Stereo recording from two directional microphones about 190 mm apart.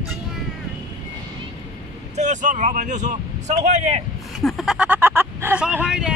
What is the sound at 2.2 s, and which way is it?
Speech, 40° right (ahead or behind).